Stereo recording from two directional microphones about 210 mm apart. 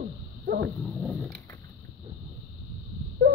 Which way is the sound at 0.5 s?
50° right (ahead or behind).